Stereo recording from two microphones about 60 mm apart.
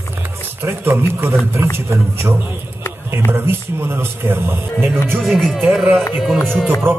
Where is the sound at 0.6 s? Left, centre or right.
Right.